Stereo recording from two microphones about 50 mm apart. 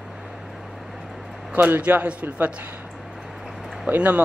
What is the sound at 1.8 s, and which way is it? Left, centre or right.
Speech, right.